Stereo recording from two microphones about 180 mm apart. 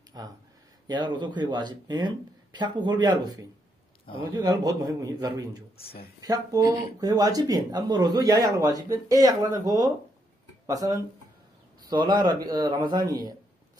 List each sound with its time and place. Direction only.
0.1 s speech: 20° right (ahead or behind)